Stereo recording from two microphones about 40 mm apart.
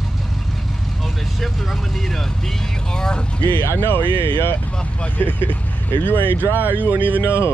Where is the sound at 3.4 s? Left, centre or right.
Left.